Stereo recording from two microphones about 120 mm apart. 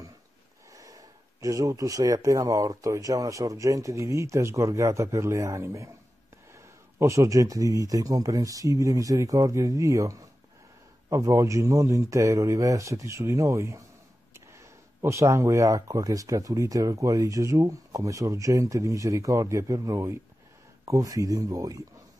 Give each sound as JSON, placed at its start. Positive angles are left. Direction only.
{"t": 0.7, "sound": "speech", "side_deg": -30}